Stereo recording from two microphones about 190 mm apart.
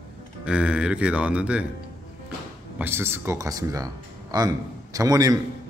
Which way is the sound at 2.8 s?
10° right (ahead or behind).